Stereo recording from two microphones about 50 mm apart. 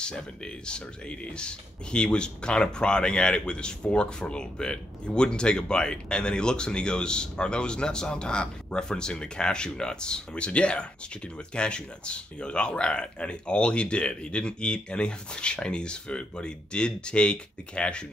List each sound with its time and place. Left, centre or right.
0.0 s speech: centre